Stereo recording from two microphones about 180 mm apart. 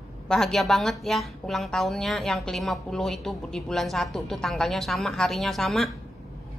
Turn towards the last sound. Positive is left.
turn(degrees=0)  # may be behind; listen again after turning